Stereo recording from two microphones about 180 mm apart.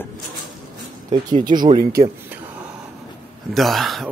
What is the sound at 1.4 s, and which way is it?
Speech, 25° right (ahead or behind).